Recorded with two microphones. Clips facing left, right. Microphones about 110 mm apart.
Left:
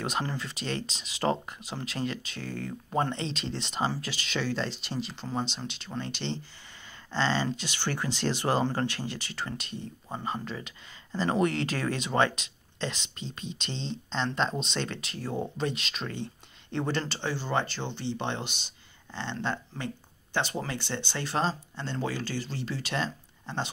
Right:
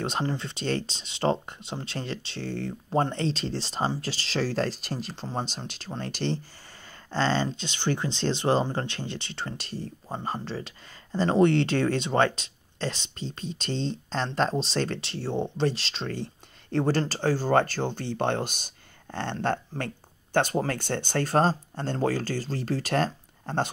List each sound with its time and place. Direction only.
0.0 s speech: 30° right (ahead or behind)
7.4 s speech: 20° right (ahead or behind); by 23.7 s 50° right (ahead or behind)